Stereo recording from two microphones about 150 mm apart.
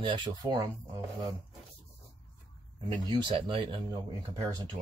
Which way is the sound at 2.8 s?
30° right (ahead or behind).